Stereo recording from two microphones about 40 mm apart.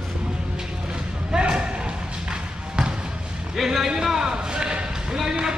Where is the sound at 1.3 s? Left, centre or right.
Right.